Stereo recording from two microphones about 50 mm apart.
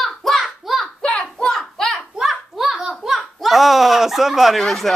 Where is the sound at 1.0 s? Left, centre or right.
Centre.